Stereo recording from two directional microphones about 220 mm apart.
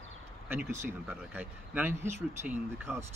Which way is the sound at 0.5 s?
10° right (ahead or behind).